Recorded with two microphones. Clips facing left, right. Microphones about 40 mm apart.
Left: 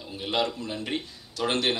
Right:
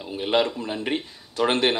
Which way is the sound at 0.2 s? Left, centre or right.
Right.